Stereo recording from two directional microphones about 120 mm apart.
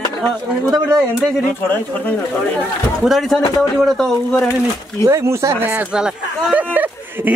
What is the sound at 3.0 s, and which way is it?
Speech, centre (ahead or behind).